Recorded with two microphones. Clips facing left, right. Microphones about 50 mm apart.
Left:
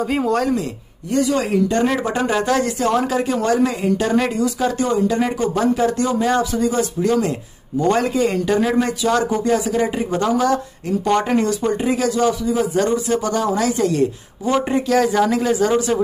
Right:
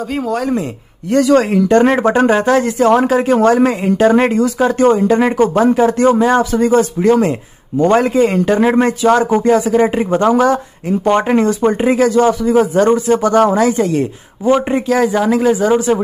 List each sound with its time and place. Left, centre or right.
0.1 s speech: centre
1.1 s speech: right
1.5 s speech: right
2.3 s a man's voice: right